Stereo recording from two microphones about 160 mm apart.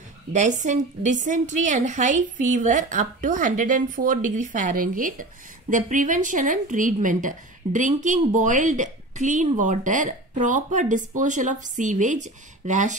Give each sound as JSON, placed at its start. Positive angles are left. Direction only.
{"t": 0.3, "sound": "a woman's voice", "side_deg": -50}